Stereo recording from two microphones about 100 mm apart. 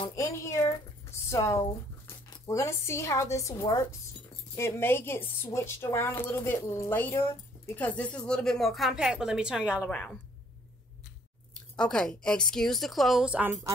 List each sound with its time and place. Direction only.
0.1 s a sound: 30° left (ahead or behind)
1.3 s a woman's voice: 30° left (ahead or behind); by 9.8 s 10° right (ahead or behind)
9.8 s a woman's voice: 10° left (ahead or behind)
11.7 s a woman's voice: 10° left (ahead or behind); by 13.5 s 10° right (ahead or behind)